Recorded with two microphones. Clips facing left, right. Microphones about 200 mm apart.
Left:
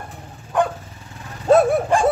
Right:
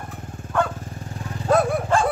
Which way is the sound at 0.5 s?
15° left (ahead or behind).